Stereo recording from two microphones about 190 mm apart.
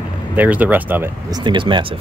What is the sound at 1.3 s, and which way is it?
Speech, 25° right (ahead or behind).